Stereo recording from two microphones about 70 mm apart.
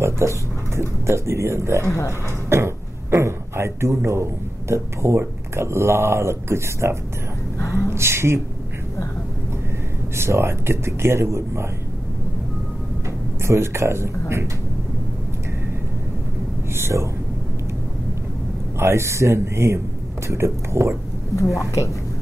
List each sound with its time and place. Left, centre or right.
0.0 s speech: right
1.9 s speech: left
2.5 s speech: right
7.5 s gasp: left
7.9 s speech: right
10.1 s speech: right
13.4 s speech: right
16.7 s a sound: right
18.8 s speech: right
21.3 s speech: left